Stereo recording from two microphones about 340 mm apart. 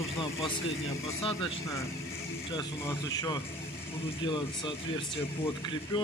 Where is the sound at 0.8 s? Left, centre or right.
Centre.